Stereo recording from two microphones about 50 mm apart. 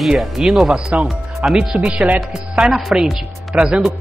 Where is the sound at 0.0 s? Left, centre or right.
Centre.